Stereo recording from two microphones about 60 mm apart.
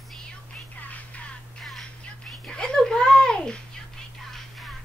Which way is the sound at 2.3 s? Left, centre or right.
Centre.